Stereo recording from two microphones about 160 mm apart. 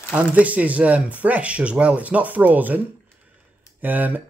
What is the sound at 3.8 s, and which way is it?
Speech, 10° right (ahead or behind).